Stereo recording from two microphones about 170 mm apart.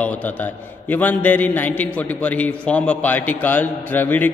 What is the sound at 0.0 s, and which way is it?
A man's voice, 10° left (ahead or behind).